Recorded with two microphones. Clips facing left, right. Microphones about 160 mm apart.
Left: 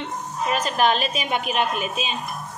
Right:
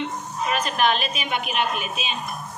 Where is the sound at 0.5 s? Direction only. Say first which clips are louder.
Left 1 dB; 35° left (ahead or behind).